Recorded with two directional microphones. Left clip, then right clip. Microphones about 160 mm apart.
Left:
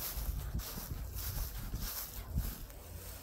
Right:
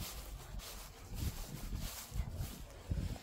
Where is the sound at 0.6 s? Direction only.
75° left (ahead or behind).